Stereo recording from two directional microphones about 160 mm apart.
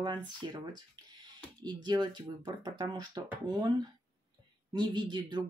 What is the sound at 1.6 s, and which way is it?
Speech, 25° right (ahead or behind).